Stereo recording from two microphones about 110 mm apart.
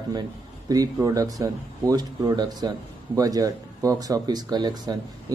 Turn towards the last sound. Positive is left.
turn(degrees=-40)  # may be behind; listen again after turning